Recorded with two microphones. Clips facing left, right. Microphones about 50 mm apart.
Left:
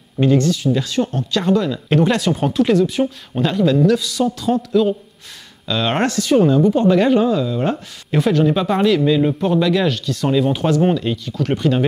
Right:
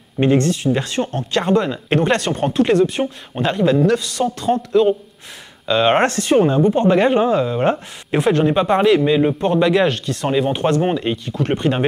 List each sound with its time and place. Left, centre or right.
0.2 s speech: right
3.3 s speech: right
6.0 s speech: right
7.7 s speech: centre
8.3 s speech: right
8.5 s speech: centre